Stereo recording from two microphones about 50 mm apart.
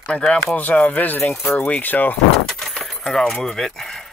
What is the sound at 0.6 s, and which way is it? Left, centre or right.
Speech, left.